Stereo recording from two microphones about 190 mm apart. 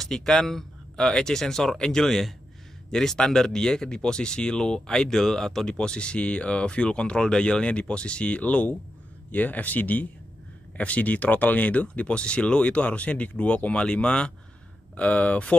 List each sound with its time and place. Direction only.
0.0 s speech: centre (ahead or behind)